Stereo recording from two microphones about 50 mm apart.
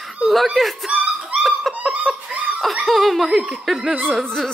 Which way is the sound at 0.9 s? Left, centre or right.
Right.